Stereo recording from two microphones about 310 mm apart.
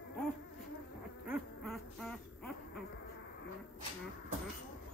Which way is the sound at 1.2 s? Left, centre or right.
Centre.